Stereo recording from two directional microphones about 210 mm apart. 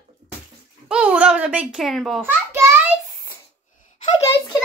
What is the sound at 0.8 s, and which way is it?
A child's voice, 5° right (ahead or behind).